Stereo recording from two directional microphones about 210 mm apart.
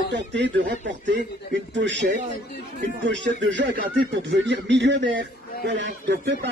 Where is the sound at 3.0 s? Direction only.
55° right (ahead or behind).